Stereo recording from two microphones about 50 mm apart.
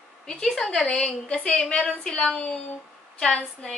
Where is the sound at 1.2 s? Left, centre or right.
Left.